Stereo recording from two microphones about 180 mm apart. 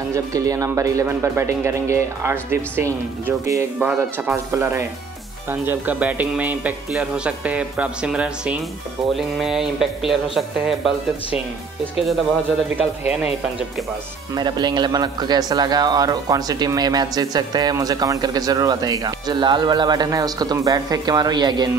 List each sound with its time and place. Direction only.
0.1 s speech: 20° right (ahead or behind); by 10.9 s centre (ahead or behind)
12.6 s speech: 10° right (ahead or behind)
14.3 s a man's voice: 25° right (ahead or behind)